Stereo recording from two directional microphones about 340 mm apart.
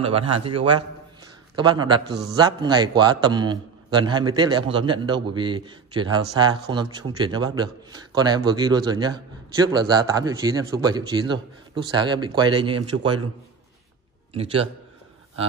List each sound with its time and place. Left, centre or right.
0.0 s a man's voice: centre
14.3 s a man's voice: centre